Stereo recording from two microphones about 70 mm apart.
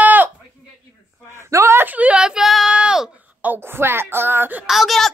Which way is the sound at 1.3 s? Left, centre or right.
Right.